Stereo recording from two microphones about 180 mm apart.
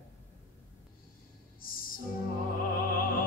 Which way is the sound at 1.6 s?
50° left (ahead or behind).